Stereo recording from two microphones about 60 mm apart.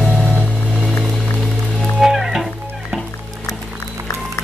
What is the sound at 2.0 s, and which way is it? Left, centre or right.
Music, centre.